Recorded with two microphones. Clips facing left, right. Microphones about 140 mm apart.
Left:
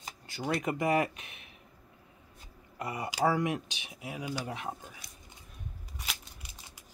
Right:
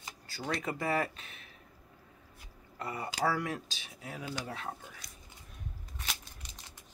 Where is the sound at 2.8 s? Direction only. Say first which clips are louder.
Left 3 dB; 15° left (ahead or behind).